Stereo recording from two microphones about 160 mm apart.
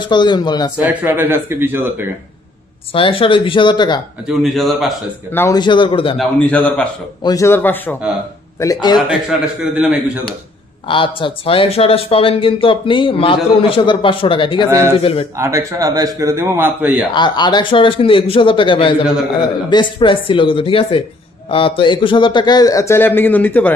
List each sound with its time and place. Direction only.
0.0 s a man's voice: 30° left (ahead or behind)
0.7 s a man's voice: 10° right (ahead or behind)
2.9 s speech: 35° left (ahead or behind)
4.3 s a man's voice: centre (ahead or behind)
5.3 s a man's voice: 15° left (ahead or behind)
5.6 s a man's voice: 30° left (ahead or behind)
6.1 s a man's voice: 10° left (ahead or behind)
8.5 s a man's voice: 25° left (ahead or behind)
9.8 s a man's voice: 5° right (ahead or behind)
10.9 s speech: 30° left (ahead or behind)
15.3 s a man's voice: 20° right (ahead or behind)
17.1 s a man's voice: 30° left (ahead or behind); by 23.7 s 10° left (ahead or behind)